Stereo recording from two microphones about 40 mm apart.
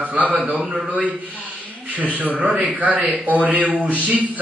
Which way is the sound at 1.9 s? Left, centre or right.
Right.